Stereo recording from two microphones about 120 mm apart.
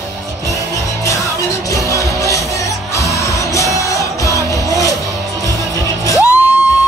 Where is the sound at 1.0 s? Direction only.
25° left (ahead or behind).